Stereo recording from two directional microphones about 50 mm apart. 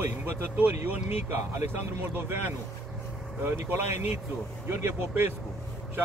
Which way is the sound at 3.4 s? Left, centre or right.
Right.